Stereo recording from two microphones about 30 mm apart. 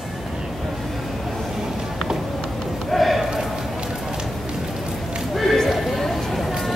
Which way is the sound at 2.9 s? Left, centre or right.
Centre.